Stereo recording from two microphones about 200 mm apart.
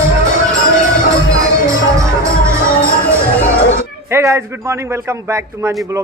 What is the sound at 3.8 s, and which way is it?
A man's voice, 15° right (ahead or behind).